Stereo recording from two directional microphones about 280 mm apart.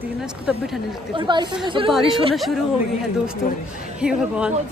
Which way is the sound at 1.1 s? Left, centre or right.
Centre.